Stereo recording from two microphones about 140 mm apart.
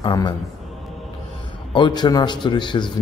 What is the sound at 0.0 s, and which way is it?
Speech, 30° left (ahead or behind).